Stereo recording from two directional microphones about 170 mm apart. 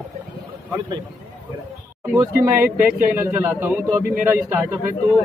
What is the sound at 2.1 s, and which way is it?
Speech, 15° right (ahead or behind).